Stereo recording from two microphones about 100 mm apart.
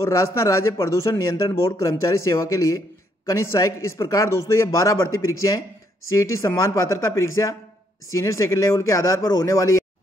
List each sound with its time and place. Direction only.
0.0 s speech: 30° left (ahead or behind)